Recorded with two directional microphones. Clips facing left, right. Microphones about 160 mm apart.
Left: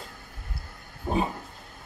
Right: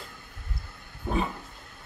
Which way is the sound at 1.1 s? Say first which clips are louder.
Left 2 dB; 25° left (ahead or behind).